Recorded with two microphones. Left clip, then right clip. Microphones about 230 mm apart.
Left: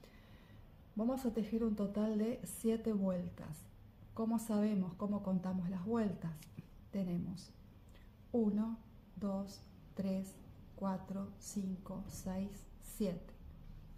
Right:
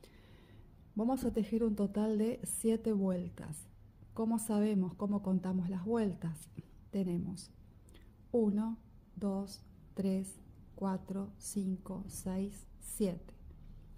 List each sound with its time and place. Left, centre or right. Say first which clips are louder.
0.9 s a woman's voice: right 4 dB; right